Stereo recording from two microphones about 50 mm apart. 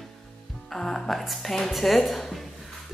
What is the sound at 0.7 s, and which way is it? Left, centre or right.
A woman's voice, centre.